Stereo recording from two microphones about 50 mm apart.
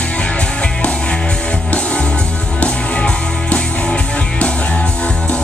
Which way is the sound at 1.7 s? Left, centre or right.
Left.